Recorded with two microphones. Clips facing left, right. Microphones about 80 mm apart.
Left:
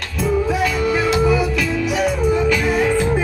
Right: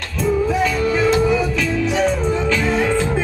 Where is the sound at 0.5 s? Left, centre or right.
Centre.